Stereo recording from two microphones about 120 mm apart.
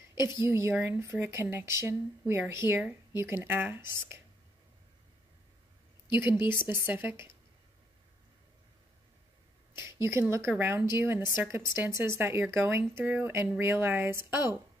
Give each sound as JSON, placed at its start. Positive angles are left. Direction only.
{"t": 0.2, "sound": "speech", "side_deg": -25}
{"t": 6.5, "sound": "speech", "side_deg": -20}
{"t": 9.8, "sound": "speech", "side_deg": -25}